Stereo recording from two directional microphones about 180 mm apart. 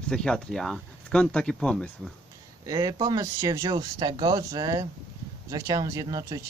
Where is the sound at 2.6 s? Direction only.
20° right (ahead or behind).